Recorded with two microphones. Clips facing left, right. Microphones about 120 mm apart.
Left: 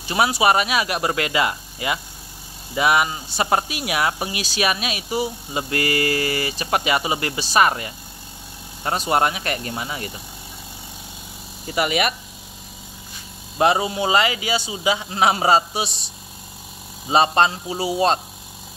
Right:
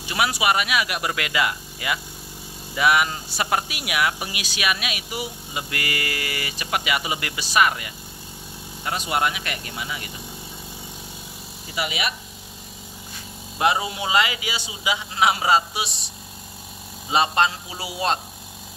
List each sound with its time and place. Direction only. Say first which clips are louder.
0.1 s speech: left 4 dB; 30° left (ahead or behind)
11.7 s speech: left 7 dB; 50° left (ahead or behind)
13.6 s speech: left 4 dB; 30° left (ahead or behind)
17.1 s speech: left 3 dB; 35° left (ahead or behind)